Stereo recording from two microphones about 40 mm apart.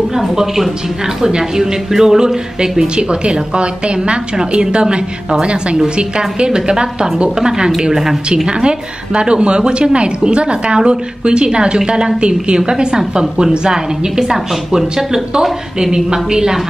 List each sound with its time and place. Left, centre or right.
0.2 s a woman's voice: centre
3.0 s a woman's voice: right; by 8.2 s centre
8.5 s a woman's voice: right